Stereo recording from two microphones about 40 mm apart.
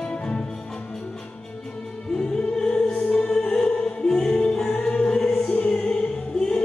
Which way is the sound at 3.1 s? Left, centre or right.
Left.